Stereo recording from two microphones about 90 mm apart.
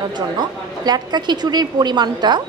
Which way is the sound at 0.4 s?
50° right (ahead or behind).